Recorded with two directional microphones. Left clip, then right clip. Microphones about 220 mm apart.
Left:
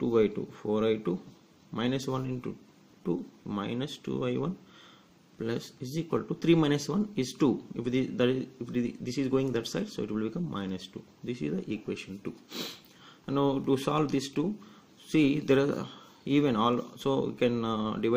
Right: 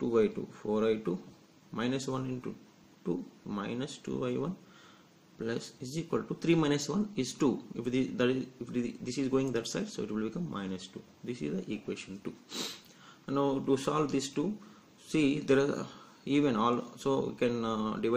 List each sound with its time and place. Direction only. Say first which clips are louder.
0.0 s speech: left 2 dB; 30° left (ahead or behind)